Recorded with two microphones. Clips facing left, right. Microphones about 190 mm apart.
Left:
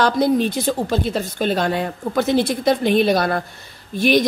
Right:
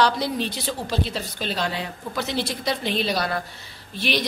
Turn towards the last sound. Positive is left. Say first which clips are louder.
# left 9 dB
turn(degrees=50)  # may be behind; listen again after turning